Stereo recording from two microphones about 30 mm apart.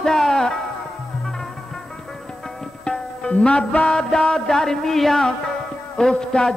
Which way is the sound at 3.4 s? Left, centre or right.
Left.